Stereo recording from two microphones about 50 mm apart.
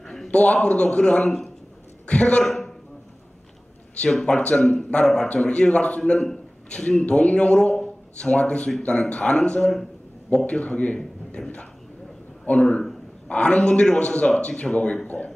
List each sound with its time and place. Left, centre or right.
0.0 s a sound: centre
0.3 s a man's voice: left
2.4 s a man's voice: centre
4.3 s a man's voice: centre
5.3 s a man's voice: left